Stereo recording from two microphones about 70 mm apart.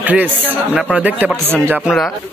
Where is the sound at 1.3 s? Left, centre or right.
Right.